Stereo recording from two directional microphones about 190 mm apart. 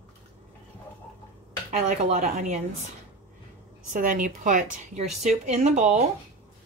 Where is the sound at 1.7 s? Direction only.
40° right (ahead or behind).